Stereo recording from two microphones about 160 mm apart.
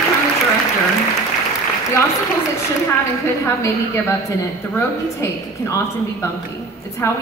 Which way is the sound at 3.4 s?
15° left (ahead or behind).